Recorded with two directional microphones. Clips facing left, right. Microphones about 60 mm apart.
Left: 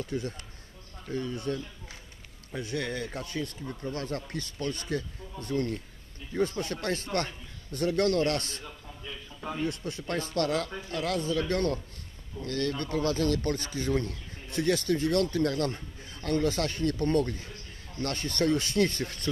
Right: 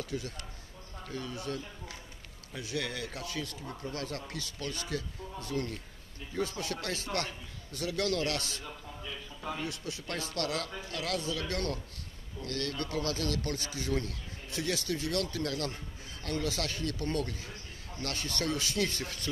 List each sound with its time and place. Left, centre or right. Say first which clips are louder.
0.0 s speech: left 4 dB; left
8.6 s a sound: even; centre
9.7 s speech: left 5 dB; left